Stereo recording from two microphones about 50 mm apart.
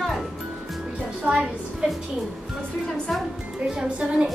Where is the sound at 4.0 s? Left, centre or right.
Right.